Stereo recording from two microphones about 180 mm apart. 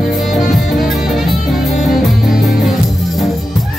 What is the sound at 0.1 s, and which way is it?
Music, centre (ahead or behind).